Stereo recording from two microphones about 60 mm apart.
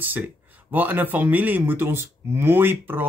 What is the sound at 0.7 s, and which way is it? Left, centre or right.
Speech, right.